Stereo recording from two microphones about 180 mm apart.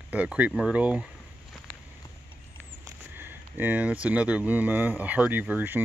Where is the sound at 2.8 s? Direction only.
10° right (ahead or behind).